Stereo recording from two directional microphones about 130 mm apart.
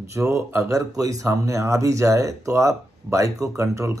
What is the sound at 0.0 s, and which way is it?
Speech, 25° right (ahead or behind).